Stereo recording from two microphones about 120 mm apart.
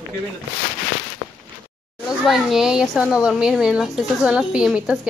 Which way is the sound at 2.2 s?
5° right (ahead or behind).